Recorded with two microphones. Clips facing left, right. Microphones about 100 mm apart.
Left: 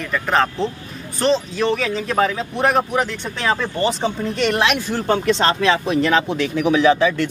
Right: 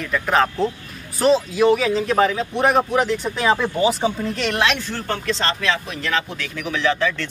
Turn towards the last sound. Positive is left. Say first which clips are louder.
# left 6 dB
turn(degrees=15)  # may be behind; listen again after turning